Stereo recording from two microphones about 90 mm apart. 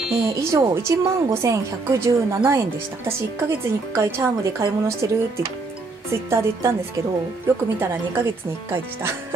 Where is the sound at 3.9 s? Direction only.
35° right (ahead or behind).